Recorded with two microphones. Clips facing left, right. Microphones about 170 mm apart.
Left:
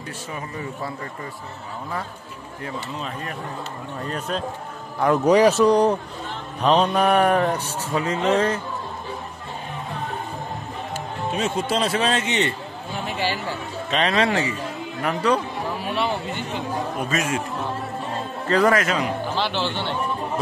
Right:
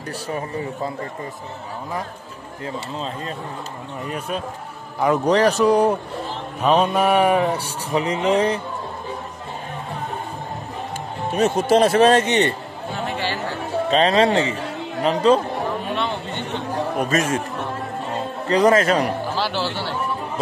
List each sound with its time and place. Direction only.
2.6 s speech: 25° right (ahead or behind)
4.0 s speech: 10° right (ahead or behind)
5.2 s speech: 10° left (ahead or behind); by 8.5 s 15° right (ahead or behind)
11.3 s speech: 45° right (ahead or behind)
13.8 s speech: 30° right (ahead or behind)
15.8 s a sound: 10° left (ahead or behind)
16.9 s speech: 45° right (ahead or behind)
18.5 s speech: 20° right (ahead or behind)
18.8 s a man's voice: 40° right (ahead or behind)
19.2 s speech: 5° right (ahead or behind)